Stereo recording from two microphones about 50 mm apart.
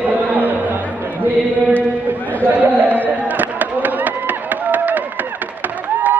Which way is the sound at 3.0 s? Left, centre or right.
Right.